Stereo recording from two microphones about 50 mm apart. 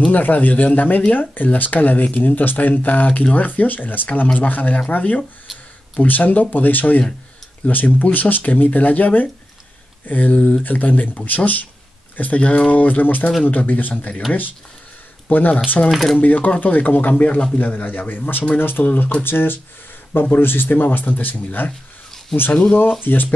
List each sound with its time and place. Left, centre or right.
0.1 s speech: left
10.6 s speech: left
15.2 s speech: left
15.9 s speech: centre
16.2 s a man's voice: left
18.9 s speech: left
19.2 s speech: left